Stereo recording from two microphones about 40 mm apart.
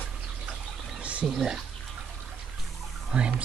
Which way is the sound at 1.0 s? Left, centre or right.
Right.